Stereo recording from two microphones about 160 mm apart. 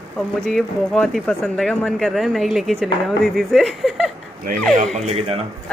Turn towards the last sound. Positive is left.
turn(degrees=-40)  # may be behind; listen again after turning